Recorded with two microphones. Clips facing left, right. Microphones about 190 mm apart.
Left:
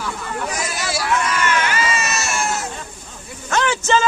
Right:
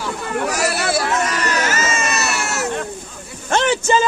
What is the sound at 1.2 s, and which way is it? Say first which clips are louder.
Baby cry: even; 40° right (ahead or behind).